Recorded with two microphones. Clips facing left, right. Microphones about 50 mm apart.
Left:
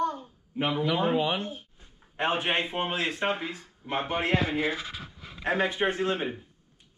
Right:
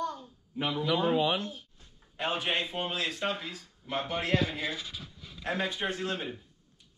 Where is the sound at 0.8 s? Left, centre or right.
Left.